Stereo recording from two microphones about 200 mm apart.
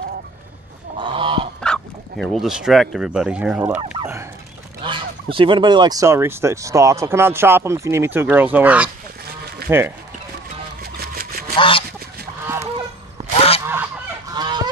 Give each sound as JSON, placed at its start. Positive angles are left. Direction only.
{"t": 0.9, "sound": "goose", "side_deg": -25}
{"t": 1.6, "sound": "speech", "side_deg": 0}
{"t": 3.7, "sound": "speech", "side_deg": -30}
{"t": 10.8, "sound": "vehicle", "side_deg": -50}
{"t": 11.5, "sound": "honk", "side_deg": 25}
{"t": 13.3, "sound": "honk", "side_deg": 30}
{"t": 14.3, "sound": "goose", "side_deg": -20}